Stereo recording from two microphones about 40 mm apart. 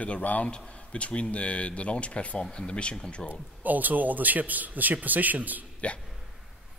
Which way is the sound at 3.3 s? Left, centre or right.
Right.